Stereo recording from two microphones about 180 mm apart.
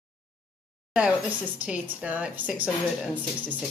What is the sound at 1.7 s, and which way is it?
A woman's voice, 10° right (ahead or behind).